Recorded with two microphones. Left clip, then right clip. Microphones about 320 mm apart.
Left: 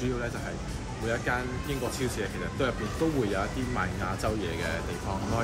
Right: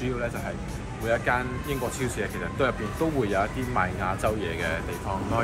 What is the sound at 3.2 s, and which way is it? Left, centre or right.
Speech, centre.